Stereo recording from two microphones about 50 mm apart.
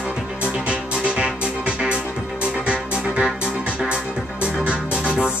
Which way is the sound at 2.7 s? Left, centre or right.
Right.